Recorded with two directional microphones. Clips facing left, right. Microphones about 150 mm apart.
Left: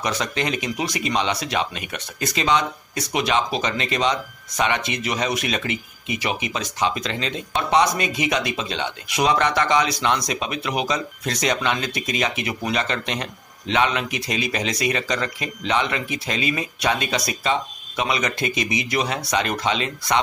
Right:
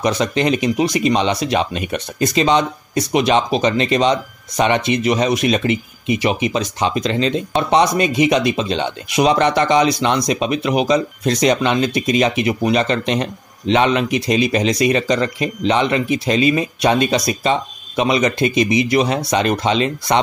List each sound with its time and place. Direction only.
0.0 s speech: 25° right (ahead or behind)